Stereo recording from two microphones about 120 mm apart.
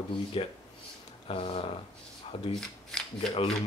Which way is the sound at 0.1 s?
50° left (ahead or behind).